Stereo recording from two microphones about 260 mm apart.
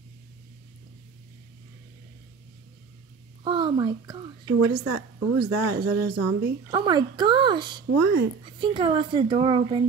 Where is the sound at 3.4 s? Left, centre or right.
Centre.